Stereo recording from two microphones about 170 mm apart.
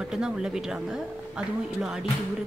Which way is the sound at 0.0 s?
5° right (ahead or behind).